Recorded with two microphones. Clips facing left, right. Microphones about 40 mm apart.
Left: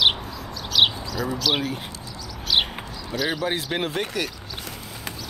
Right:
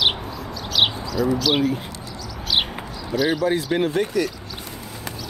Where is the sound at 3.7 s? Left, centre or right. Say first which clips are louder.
Right 6 dB; left.